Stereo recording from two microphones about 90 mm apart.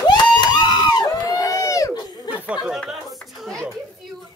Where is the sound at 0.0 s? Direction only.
55° left (ahead or behind).